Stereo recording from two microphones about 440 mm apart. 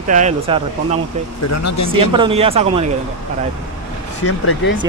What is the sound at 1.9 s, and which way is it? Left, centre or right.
Speech, centre.